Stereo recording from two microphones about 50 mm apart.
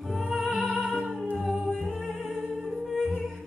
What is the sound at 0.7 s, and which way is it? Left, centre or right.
Music, left.